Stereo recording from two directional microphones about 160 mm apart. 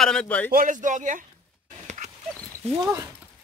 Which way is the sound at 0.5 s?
55° right (ahead or behind).